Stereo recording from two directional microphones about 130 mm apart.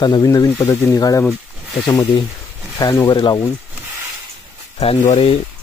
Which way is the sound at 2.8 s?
25° left (ahead or behind).